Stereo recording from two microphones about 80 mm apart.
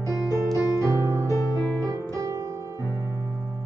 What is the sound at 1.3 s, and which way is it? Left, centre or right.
Music, left.